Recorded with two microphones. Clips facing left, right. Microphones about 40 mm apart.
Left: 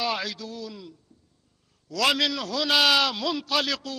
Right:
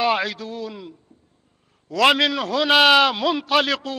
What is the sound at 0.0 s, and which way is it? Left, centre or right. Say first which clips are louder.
A man's voice: right 8 dB; right.